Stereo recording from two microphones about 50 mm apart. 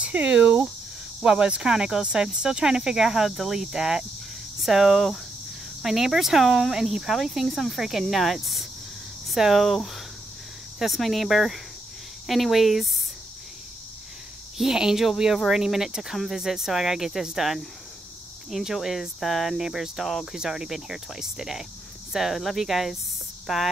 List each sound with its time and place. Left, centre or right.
0.0 s a sound: right
1.2 s speech: centre
10.8 s speech: centre
14.6 s speech: centre